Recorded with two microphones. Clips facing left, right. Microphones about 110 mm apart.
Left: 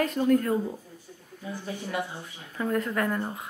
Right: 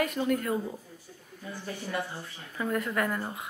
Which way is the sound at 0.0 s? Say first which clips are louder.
Left 5 dB; 5° right (ahead or behind).